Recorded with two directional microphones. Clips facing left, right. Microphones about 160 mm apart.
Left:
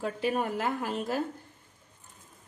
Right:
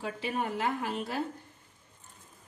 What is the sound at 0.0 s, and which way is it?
A woman's voice, 45° left (ahead or behind).